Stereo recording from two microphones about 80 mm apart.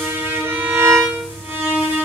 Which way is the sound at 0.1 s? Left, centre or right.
Right.